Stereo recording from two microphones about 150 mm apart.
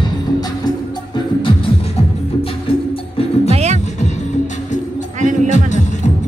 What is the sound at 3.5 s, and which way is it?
Music, 45° right (ahead or behind).